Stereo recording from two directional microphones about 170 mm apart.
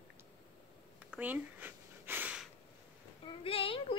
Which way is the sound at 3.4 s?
35° left (ahead or behind).